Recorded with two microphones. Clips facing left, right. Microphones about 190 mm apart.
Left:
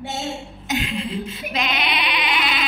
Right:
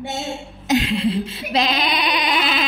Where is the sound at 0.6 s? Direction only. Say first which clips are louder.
Right 7 dB; 35° right (ahead or behind).